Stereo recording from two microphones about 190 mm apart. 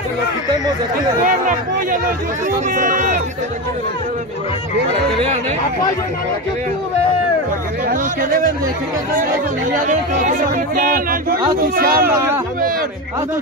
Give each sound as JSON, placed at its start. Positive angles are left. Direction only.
{"t": 1.2, "sound": "speech", "side_deg": -45}
{"t": 7.9, "sound": "speech", "side_deg": -45}
{"t": 9.8, "sound": "speech", "side_deg": -40}